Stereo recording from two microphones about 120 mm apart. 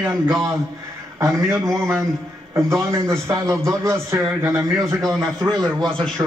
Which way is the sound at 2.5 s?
25° right (ahead or behind).